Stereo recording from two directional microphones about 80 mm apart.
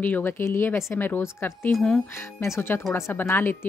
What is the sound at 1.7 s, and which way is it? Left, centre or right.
Speech, centre.